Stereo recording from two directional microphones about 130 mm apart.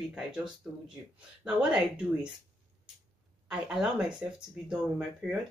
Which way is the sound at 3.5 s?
5° right (ahead or behind).